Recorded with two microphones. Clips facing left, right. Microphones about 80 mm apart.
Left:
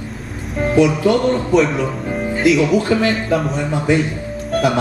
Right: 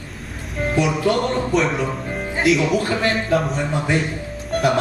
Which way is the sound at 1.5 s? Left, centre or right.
Centre.